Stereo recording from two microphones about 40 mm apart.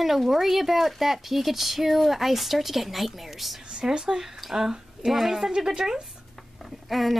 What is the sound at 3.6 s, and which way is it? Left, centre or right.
Speech, right.